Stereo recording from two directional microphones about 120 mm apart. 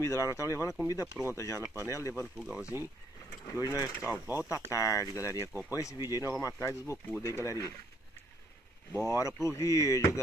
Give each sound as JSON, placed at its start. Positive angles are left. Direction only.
{"t": 0.0, "sound": "speech", "side_deg": 25}
{"t": 2.1, "sound": "speech", "side_deg": -10}
{"t": 3.4, "sound": "speech", "side_deg": 30}
{"t": 4.0, "sound": "speech", "side_deg": -15}
{"t": 4.6, "sound": "speech", "side_deg": 30}
{"t": 9.1, "sound": "speech", "side_deg": 25}